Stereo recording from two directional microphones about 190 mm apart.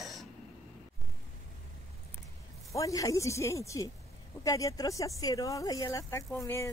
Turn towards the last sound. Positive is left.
turn(degrees=15)  # may be behind; listen again after turning